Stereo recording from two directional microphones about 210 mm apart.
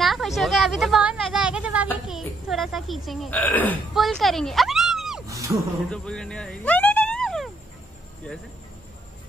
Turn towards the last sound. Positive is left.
turn(degrees=0)  # may be behind; listen again after turning